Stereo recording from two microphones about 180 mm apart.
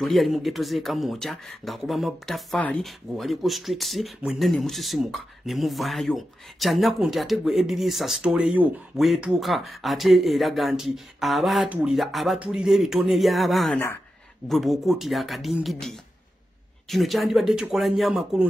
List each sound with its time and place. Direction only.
0.0 s speech: centre (ahead or behind)